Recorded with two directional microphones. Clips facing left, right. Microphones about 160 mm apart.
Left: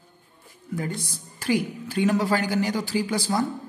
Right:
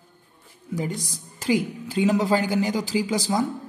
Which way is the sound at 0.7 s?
15° right (ahead or behind).